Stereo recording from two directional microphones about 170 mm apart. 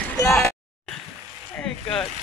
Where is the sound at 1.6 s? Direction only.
5° left (ahead or behind).